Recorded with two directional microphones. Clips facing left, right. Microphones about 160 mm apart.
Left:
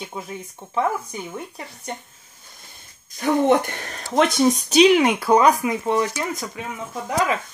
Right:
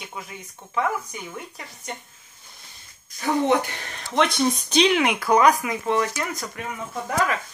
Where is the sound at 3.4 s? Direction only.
50° left (ahead or behind).